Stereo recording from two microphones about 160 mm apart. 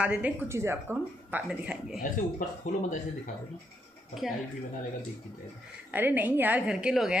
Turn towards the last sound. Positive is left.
turn(degrees=-5)  # may be behind; listen again after turning